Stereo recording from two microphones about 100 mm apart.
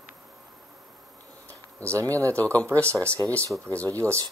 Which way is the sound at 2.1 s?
30° right (ahead or behind).